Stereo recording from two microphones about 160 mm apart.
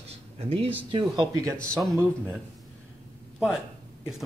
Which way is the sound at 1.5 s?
5° left (ahead or behind).